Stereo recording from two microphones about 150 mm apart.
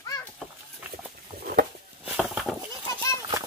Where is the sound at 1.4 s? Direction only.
90° right.